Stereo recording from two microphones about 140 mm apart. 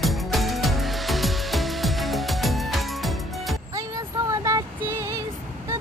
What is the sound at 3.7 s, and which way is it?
Female singing, 25° right (ahead or behind).